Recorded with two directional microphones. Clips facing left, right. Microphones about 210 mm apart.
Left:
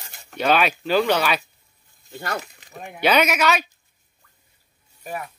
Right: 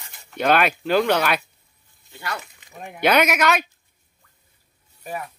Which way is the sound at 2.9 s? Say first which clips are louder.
Right 1 dB; 10° right (ahead or behind).